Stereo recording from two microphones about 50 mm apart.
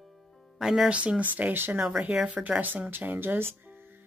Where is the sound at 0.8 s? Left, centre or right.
Right.